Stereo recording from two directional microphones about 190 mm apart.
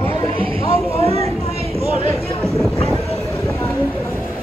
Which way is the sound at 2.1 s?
15° left (ahead or behind).